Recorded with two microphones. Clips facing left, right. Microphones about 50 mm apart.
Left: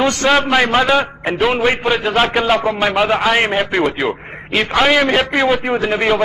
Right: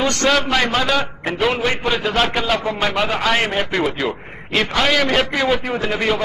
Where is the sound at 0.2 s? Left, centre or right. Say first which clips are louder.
Left 3 dB; centre.